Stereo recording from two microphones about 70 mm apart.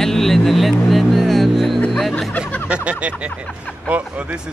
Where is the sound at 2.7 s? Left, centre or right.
Centre.